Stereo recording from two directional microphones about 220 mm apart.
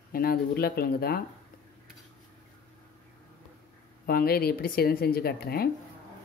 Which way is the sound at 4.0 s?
40° left (ahead or behind).